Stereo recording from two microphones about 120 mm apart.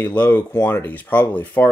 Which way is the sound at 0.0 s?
10° left (ahead or behind).